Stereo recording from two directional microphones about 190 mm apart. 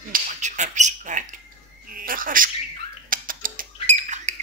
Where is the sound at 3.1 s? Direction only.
45° right (ahead or behind).